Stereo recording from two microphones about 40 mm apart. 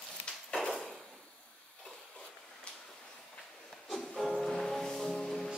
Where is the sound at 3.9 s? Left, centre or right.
Centre.